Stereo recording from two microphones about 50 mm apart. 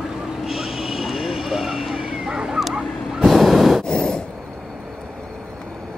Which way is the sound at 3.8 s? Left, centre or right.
Centre.